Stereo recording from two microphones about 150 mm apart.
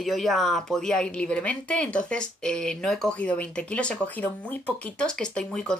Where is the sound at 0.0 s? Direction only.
Centre (ahead or behind).